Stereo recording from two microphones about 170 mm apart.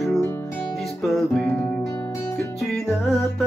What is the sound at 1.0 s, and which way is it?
Music, centre (ahead or behind).